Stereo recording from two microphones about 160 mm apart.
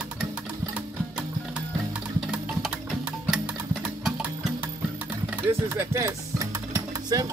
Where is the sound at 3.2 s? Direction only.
5° right (ahead or behind).